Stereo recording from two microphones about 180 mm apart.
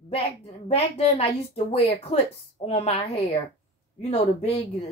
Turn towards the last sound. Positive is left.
turn(degrees=35)  # may be behind; listen again after turning